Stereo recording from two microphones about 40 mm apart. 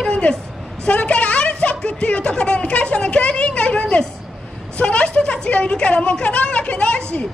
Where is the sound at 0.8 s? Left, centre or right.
Left.